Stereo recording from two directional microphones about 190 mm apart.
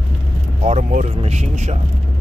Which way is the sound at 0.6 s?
35° right (ahead or behind).